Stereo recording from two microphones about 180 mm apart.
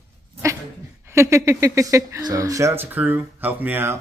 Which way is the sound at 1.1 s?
15° right (ahead or behind).